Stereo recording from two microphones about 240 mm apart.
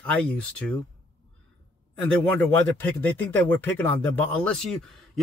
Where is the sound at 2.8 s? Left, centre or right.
Centre.